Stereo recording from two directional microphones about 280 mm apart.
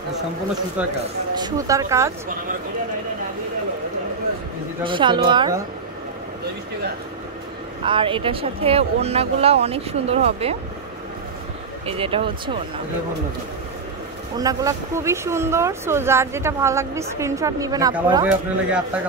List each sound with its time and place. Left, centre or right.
0.8 s a man's voice: centre
4.8 s speech: centre
7.8 s speech: centre
11.8 s speech: centre
14.4 s speech: centre